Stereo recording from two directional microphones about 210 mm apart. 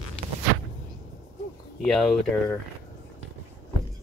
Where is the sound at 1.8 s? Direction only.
5° left (ahead or behind).